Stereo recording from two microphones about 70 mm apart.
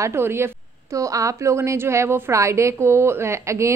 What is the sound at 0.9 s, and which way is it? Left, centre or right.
A woman's voice, right.